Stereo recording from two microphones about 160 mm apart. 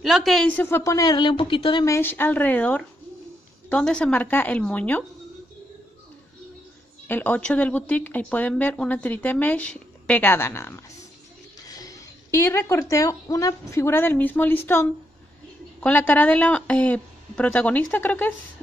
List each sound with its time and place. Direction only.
0.0 s speech: centre (ahead or behind); by 1.9 s 30° left (ahead or behind)
1.9 s speech: 15° left (ahead or behind)
7.1 s speech: 10° left (ahead or behind)